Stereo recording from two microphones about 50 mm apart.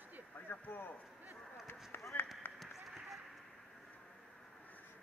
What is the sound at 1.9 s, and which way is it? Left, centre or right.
Run, left.